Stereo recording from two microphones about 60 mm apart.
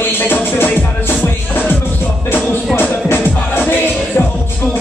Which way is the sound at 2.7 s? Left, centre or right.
Left.